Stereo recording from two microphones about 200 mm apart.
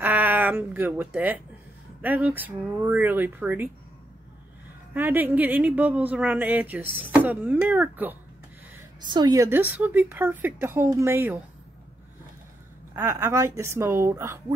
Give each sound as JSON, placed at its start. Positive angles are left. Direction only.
{"t": 0.0, "sound": "a sound", "side_deg": -10}
{"t": 2.0, "sound": "speech", "side_deg": -10}
{"t": 4.9, "sound": "speech", "side_deg": -10}
{"t": 9.0, "sound": "speech", "side_deg": -20}
{"t": 12.9, "sound": "speech", "side_deg": -15}